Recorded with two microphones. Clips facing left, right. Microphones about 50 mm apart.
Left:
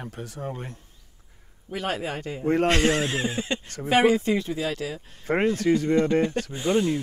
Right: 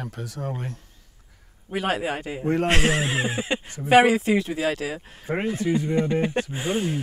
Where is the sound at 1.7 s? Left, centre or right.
Centre.